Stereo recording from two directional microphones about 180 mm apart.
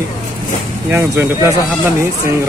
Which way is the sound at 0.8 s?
10° right (ahead or behind).